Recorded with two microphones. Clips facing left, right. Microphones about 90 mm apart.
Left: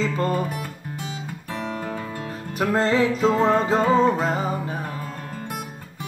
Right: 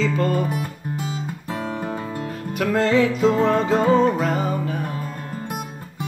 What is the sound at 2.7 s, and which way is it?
Music, 35° left (ahead or behind).